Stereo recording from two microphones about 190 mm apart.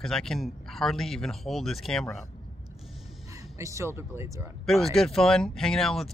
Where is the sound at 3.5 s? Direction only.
15° right (ahead or behind).